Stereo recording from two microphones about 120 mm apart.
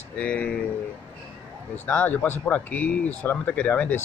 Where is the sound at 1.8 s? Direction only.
15° left (ahead or behind).